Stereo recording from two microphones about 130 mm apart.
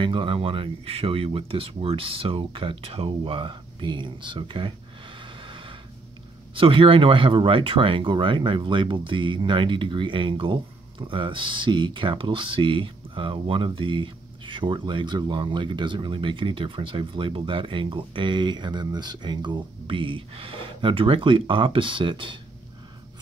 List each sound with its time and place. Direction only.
0.0 s speech: 40° right (ahead or behind)
5.2 s a sound: 40° right (ahead or behind)
6.5 s speech: 40° right (ahead or behind)